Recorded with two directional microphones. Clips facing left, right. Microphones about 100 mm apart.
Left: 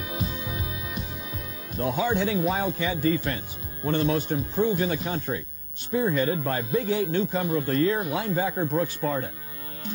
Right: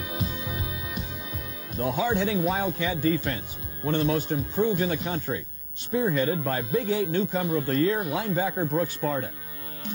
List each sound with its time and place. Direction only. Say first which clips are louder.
0.0 s music: even; 10° left (ahead or behind)
1.8 s speech: even; 10° left (ahead or behind)